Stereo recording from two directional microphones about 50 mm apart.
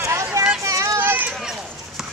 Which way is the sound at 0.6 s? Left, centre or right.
Right.